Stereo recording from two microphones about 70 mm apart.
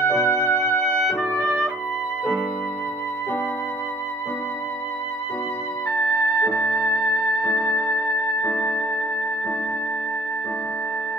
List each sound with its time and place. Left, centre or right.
0.1 s music: centre
6.4 s music: centre